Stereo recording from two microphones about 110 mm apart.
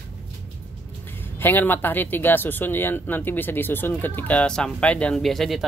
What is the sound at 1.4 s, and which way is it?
Speech, 20° left (ahead or behind).